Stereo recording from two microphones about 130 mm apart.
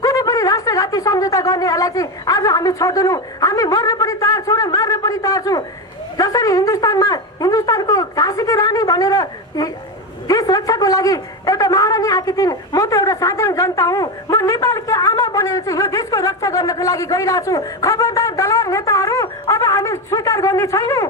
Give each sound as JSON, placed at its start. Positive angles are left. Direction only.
{"t": 0.0, "sound": "a man's voice", "side_deg": 25}